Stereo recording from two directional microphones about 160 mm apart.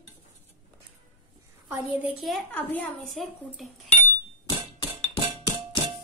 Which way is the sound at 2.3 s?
5° left (ahead or behind).